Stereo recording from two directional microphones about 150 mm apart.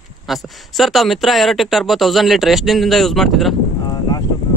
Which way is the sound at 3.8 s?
30° left (ahead or behind).